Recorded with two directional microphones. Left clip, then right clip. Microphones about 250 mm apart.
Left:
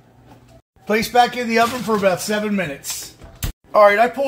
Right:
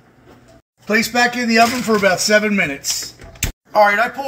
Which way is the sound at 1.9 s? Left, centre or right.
Centre.